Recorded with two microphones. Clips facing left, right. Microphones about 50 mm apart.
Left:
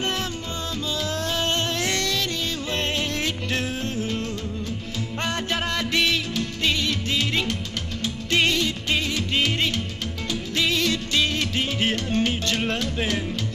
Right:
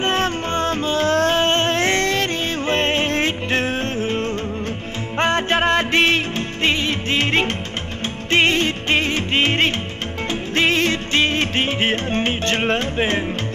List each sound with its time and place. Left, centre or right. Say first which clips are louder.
0.0 s music: right 8 dB; right